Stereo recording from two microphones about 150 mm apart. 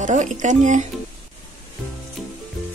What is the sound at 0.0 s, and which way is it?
Speech, 55° right (ahead or behind).